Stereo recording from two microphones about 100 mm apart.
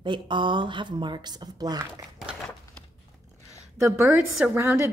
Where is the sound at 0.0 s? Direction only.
50° right (ahead or behind).